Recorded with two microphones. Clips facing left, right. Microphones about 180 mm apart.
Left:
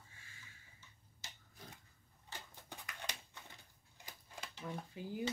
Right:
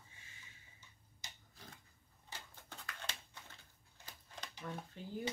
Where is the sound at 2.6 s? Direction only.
15° left (ahead or behind).